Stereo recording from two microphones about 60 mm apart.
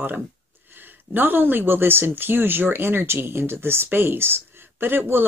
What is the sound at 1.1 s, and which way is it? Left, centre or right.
Speech, right.